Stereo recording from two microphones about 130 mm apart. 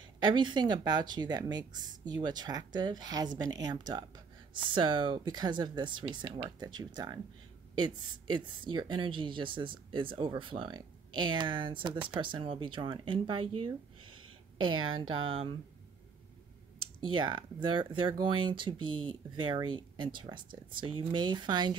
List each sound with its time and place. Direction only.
0.2 s speech: 35° right (ahead or behind)
15.2 s speech: 45° right (ahead or behind)
17.2 s speech: 35° right (ahead or behind)